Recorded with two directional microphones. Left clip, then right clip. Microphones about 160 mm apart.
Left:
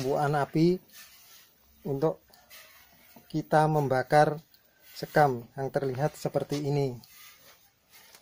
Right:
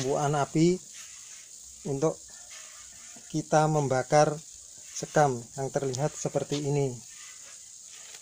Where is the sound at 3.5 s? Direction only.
10° right (ahead or behind).